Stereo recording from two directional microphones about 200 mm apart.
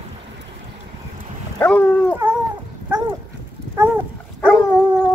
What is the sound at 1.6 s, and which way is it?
Dog, 10° left (ahead or behind).